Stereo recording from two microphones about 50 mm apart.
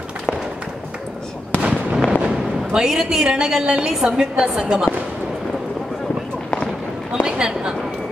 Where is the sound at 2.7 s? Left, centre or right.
Centre.